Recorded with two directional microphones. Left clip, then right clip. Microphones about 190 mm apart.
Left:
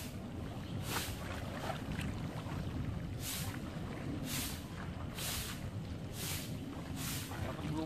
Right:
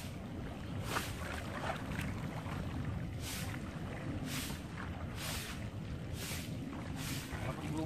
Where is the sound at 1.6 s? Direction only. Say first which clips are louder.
Right 2 dB; 25° right (ahead or behind).